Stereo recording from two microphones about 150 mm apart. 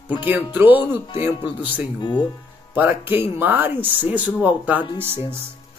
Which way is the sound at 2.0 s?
30° left (ahead or behind).